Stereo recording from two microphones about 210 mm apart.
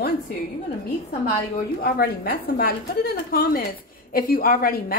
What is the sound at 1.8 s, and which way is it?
A woman's voice, 45° left (ahead or behind).